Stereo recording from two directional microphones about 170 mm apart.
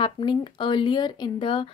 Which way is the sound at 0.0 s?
30° left (ahead or behind).